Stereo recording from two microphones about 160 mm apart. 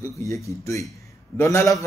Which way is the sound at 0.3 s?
20° left (ahead or behind).